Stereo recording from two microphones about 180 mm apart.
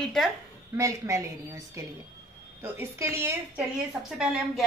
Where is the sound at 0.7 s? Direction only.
15° right (ahead or behind).